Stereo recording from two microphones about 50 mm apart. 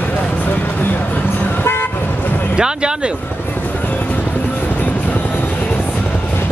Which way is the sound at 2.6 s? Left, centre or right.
Centre.